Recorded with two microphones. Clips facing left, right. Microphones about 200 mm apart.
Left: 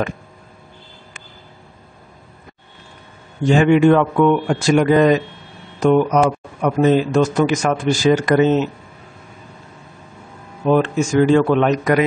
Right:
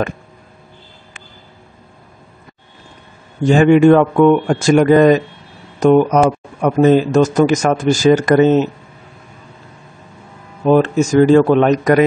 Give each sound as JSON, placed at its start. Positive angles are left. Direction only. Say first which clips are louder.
{"t": 3.4, "sound": "speech", "louder": "right 3 dB", "side_deg": -45}
{"t": 10.6, "sound": "speech", "louder": "right 4 dB", "side_deg": -40}